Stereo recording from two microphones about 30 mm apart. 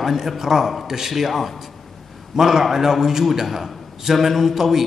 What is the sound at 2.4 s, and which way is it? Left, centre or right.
A man's voice, centre.